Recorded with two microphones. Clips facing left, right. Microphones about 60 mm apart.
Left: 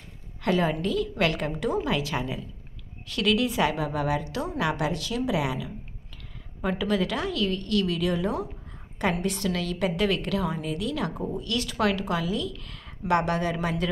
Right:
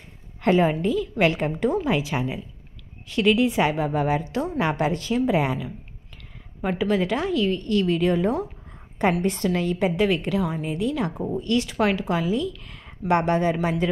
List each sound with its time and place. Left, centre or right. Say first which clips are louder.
0.4 s a woman's voice: right 5 dB; right
6.8 s a woman's voice: right 4 dB; right